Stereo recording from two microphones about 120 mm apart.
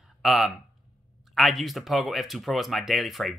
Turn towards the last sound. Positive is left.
turn(degrees=0)  # may be behind; listen again after turning